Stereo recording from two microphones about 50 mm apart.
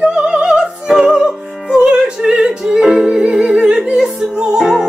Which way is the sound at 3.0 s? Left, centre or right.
Centre.